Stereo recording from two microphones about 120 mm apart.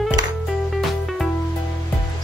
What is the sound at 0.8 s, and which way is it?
Music, centre (ahead or behind).